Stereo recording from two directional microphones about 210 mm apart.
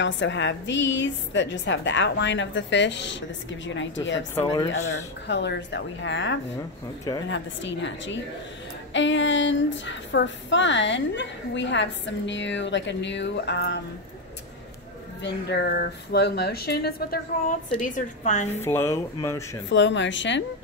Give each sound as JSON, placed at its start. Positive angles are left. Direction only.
{"t": 0.0, "sound": "speech", "side_deg": 60}
{"t": 4.4, "sound": "speech", "side_deg": 20}
{"t": 5.3, "sound": "speech", "side_deg": 55}
{"t": 15.2, "sound": "a woman's voice", "side_deg": 50}
{"t": 18.5, "sound": "speech", "side_deg": 10}
{"t": 19.7, "sound": "speech", "side_deg": 60}